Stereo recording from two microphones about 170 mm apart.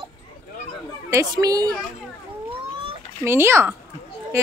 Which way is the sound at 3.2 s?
15° right (ahead or behind).